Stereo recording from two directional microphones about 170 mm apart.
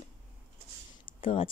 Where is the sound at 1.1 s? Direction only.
30° left (ahead or behind).